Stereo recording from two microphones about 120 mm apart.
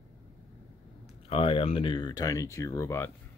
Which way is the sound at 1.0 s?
50° left (ahead or behind).